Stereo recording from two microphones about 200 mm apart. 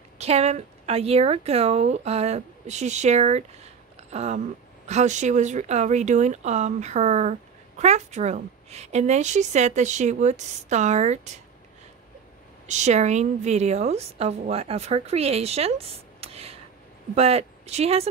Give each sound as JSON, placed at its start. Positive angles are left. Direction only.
{"t": 0.2, "sound": "speech", "side_deg": -30}
{"t": 12.6, "sound": "speech", "side_deg": -35}